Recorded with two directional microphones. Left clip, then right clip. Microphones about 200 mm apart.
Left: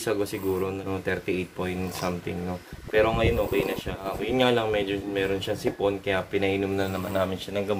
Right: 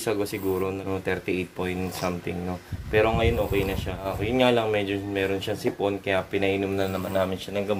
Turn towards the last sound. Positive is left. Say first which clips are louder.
# right 1 dB
turn(degrees=-5)  # may be behind; listen again after turning